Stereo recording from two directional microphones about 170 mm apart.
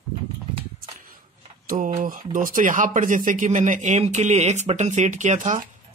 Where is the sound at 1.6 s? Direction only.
50° right (ahead or behind).